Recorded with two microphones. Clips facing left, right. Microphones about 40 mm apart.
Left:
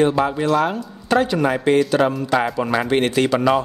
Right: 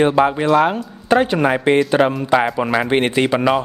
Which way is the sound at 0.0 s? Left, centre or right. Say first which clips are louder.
Right 3 dB; right.